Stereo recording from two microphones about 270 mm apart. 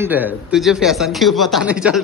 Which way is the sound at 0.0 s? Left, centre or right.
Centre.